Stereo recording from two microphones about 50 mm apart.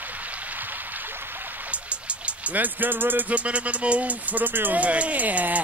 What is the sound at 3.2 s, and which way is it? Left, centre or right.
Music, right.